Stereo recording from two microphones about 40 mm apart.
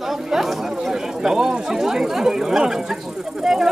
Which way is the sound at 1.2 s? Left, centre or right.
Centre.